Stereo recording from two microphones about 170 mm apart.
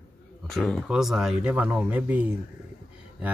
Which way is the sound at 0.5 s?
5° left (ahead or behind).